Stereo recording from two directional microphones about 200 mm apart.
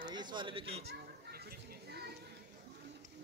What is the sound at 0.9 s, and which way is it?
Children playing, 50° right (ahead or behind).